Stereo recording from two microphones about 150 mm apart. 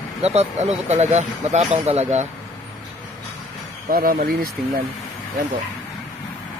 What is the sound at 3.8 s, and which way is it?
Speech, 70° right (ahead or behind).